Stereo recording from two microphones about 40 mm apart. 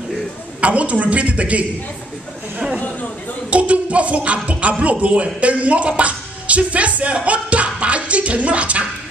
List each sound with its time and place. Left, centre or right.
0.6 s a woman's voice: right
3.4 s speech: right